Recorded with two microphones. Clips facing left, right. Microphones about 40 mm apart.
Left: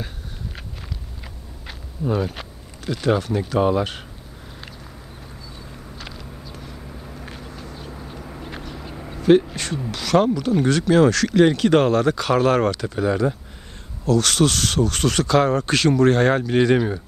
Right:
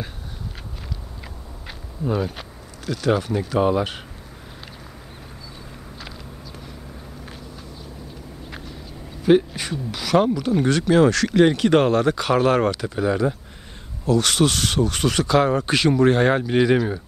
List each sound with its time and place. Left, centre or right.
1.7 s a sound: centre
2.9 s speech: centre
3.3 s speech: centre
9.3 s speech: centre
14.0 s speech: centre
16.7 s speech: centre